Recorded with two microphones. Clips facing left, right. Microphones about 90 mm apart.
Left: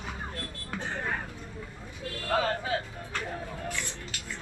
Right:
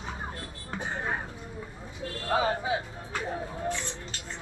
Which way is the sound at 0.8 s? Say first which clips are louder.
Right 1 dB; 20° right (ahead or behind).